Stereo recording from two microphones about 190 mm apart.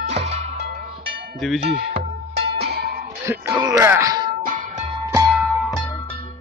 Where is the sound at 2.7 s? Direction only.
55° right (ahead or behind).